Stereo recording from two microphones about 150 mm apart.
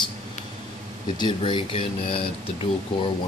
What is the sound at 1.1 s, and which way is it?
Speech, 30° left (ahead or behind).